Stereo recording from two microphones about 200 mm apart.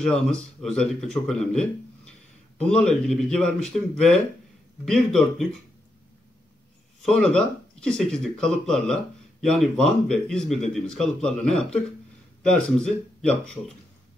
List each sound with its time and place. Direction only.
0.0 s speech: 5° left (ahead or behind)
7.0 s speech: 5° left (ahead or behind)